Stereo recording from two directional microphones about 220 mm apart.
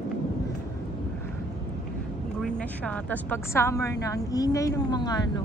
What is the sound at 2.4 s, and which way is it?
Speech, 5° left (ahead or behind).